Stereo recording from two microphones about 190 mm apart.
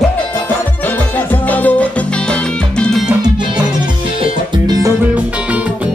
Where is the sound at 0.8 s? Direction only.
10° left (ahead or behind).